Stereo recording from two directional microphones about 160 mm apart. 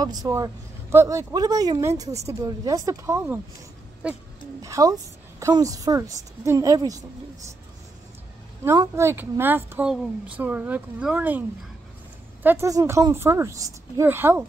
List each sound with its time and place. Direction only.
0.0 s a woman's voice: 25° right (ahead or behind); by 4.2 s 5° right (ahead or behind)
4.6 s a woman's voice: 20° right (ahead or behind)
8.6 s a woman's voice: 15° right (ahead or behind)
12.4 s a woman's voice: 20° right (ahead or behind)